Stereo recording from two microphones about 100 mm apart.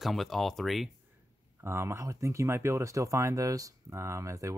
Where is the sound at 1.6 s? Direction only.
25° right (ahead or behind).